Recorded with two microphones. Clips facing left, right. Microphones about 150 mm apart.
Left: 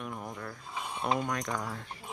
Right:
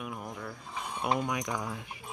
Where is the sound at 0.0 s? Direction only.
5° right (ahead or behind).